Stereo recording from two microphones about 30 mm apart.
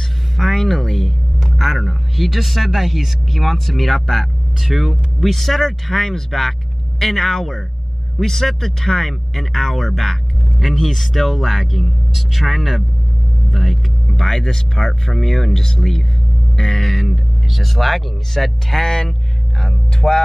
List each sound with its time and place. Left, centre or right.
0.6 s speech: centre
1.4 s a man's voice: centre
14.1 s a man's voice: centre